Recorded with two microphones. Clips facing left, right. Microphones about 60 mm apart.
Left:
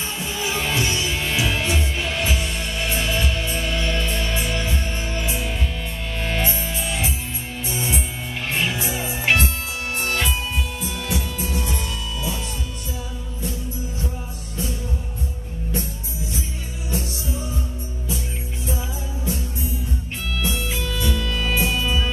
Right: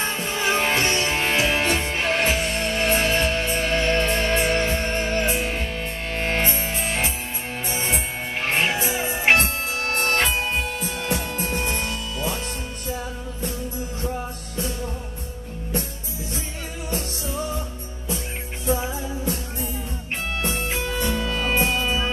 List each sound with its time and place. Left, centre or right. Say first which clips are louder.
0.0 s music: right 3 dB; right
18.7 s music: right 7 dB; right
21.3 s music: right 1 dB; right
21.5 s music: even; right